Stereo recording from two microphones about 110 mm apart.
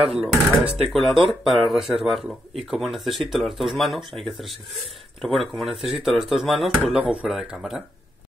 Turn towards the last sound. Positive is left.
turn(degrees=-5)  # may be behind; listen again after turning